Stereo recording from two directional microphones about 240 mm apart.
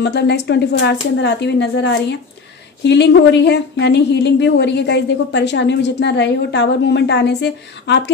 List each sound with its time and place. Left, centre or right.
0.0 s speech: left